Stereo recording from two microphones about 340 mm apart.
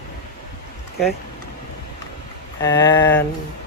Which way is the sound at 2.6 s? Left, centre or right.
Centre.